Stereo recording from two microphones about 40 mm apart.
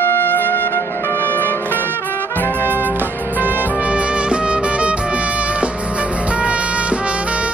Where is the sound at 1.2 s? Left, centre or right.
Left.